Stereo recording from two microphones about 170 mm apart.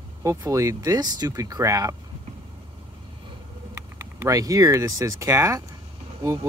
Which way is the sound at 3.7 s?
20° right (ahead or behind).